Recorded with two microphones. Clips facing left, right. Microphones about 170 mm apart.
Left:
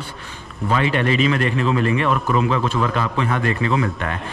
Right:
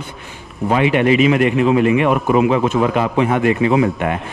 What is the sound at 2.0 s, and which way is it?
Speech, 55° right (ahead or behind).